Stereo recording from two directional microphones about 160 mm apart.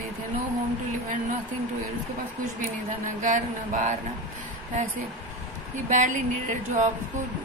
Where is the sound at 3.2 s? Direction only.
50° right (ahead or behind).